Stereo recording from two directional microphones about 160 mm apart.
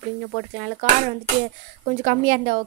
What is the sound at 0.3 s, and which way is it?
A woman's voice, 50° right (ahead or behind).